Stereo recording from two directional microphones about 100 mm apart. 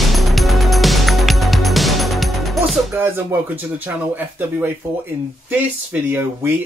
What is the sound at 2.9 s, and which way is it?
Speech, 20° right (ahead or behind).